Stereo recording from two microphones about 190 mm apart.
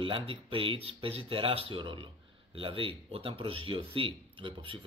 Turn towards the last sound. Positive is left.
turn(degrees=-25)  # may be behind; listen again after turning